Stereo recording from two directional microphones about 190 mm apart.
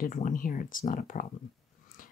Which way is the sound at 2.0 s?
45° left (ahead or behind).